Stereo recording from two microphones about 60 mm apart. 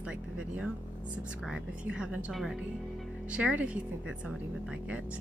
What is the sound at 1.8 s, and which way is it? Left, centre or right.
Speech, centre.